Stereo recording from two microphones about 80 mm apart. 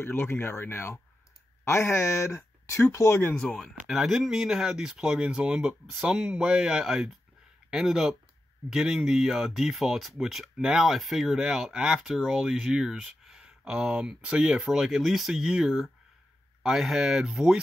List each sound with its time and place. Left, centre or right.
0.0 s speech: left
3.3 s speech: centre
3.8 s speech: centre